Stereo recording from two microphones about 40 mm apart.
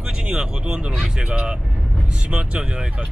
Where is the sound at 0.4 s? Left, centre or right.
Centre.